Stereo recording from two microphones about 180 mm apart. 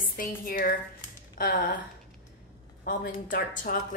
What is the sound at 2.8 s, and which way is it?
Speech, 50° left (ahead or behind).